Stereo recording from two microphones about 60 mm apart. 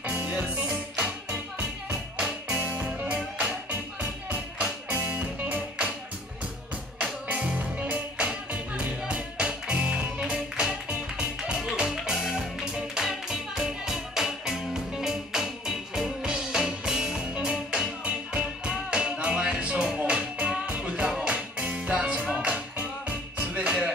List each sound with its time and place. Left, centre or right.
0.0 s music: right
2.1 s music: right
4.0 s music: right
7.0 s music: right